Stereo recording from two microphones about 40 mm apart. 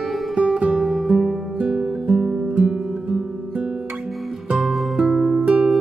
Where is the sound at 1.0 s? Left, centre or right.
Centre.